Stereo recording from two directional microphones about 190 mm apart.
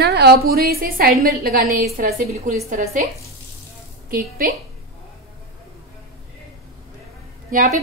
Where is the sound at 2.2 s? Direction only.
40° right (ahead or behind).